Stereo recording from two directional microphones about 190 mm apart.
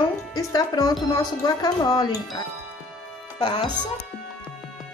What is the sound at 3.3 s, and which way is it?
Speech, 25° left (ahead or behind).